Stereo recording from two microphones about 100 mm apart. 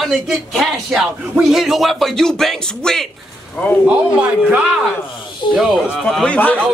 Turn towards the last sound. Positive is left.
turn(degrees=15)  # may be behind; listen again after turning